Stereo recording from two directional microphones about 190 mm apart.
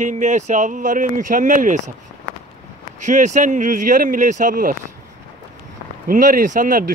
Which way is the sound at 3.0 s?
40° right (ahead or behind).